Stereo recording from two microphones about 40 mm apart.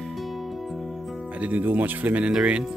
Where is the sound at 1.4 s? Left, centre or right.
Right.